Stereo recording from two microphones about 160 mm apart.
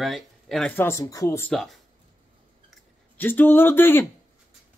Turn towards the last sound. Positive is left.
turn(degrees=15)  # may be behind; listen again after turning